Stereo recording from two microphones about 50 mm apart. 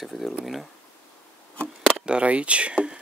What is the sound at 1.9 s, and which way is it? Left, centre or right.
Speech, centre.